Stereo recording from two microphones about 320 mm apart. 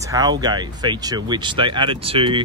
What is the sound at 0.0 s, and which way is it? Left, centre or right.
Speech, centre.